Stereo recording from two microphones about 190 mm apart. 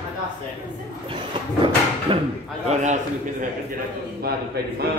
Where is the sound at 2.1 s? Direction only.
30° right (ahead or behind).